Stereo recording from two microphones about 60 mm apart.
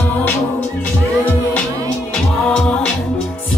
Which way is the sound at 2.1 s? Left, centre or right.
Centre.